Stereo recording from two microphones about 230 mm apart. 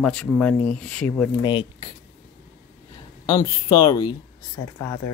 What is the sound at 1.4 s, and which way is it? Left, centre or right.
Speech, left.